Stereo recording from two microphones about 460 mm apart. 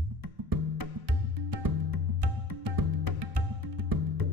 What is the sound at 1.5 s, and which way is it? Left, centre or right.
Music, right.